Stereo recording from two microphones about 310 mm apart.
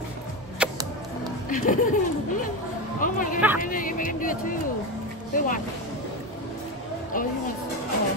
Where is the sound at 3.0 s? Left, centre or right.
Left.